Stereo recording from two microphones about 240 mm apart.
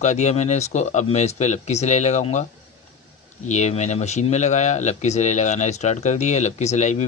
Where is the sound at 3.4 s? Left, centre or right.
Left.